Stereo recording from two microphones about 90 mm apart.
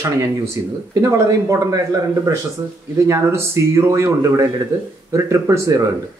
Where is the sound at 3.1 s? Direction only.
30° right (ahead or behind).